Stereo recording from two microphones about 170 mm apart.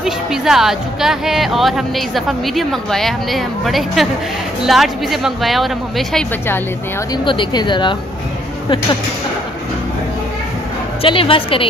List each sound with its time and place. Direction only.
0.0 s speech: 5° right (ahead or behind)
7.2 s a woman's voice: 30° left (ahead or behind)
11.0 s a woman's voice: 30° left (ahead or behind)